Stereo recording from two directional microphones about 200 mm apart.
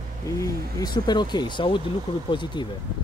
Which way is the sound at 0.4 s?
20° left (ahead or behind).